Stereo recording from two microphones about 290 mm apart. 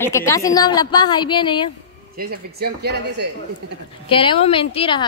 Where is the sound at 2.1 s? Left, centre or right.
Right.